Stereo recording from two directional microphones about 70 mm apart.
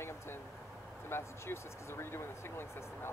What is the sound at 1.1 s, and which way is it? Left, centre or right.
Speech, left.